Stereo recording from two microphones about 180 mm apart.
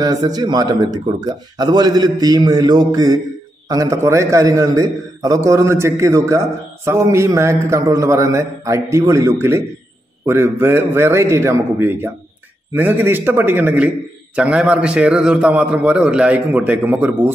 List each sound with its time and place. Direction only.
0.0 s a man's voice: 20° right (ahead or behind)